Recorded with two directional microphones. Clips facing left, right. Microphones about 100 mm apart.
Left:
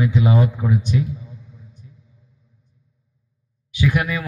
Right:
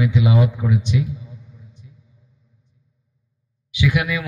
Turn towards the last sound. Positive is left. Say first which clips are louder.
# even
turn(degrees=40)  # may be behind; listen again after turning